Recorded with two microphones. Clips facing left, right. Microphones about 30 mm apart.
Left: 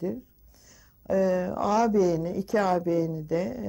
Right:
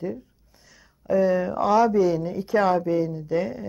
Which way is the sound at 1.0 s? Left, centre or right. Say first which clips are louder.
Right 4 dB; right.